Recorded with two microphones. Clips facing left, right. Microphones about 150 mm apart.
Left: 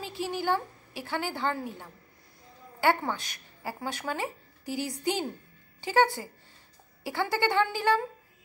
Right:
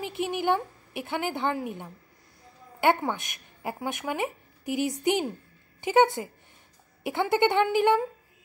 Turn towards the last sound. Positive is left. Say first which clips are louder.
# right 4 dB
turn(degrees=-20)  # may be behind; listen again after turning